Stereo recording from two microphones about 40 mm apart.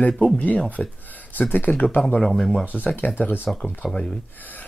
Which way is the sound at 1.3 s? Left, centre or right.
Left.